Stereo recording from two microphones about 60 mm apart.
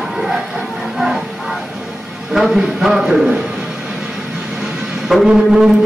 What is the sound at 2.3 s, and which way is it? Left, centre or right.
Speech, centre.